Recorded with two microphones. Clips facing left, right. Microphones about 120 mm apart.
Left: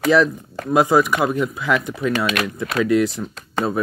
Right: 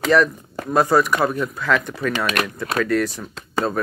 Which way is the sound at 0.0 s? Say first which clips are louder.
Left 1 dB; 10° left (ahead or behind).